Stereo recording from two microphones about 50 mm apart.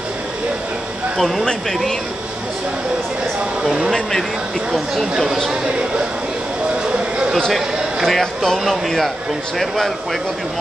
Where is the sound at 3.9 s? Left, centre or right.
Centre.